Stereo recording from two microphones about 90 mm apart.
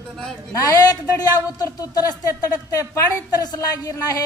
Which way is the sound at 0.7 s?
45° left (ahead or behind).